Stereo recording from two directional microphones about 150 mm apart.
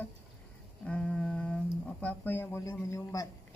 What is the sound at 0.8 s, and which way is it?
Music, 10° left (ahead or behind).